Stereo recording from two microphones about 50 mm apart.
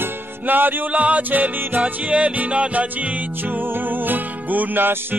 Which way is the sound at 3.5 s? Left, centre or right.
Right.